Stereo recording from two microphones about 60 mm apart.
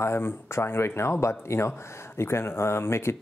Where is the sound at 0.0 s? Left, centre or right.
Left.